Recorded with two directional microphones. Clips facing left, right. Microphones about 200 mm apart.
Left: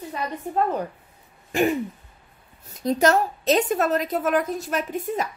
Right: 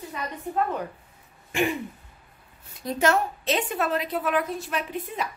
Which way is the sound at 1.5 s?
40° left (ahead or behind).